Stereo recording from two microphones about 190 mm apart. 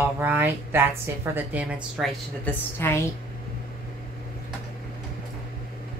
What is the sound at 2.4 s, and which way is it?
Speech, 15° left (ahead or behind).